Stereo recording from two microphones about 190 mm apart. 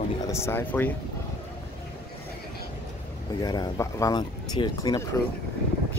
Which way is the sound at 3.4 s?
20° left (ahead or behind).